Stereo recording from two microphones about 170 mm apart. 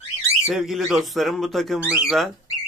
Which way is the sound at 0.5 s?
Centre (ahead or behind).